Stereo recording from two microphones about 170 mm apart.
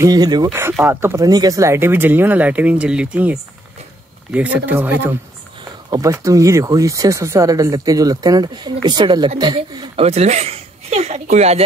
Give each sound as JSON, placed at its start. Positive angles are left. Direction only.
{"t": 0.0, "sound": "speech", "side_deg": -20}
{"t": 10.0, "sound": "speech", "side_deg": -40}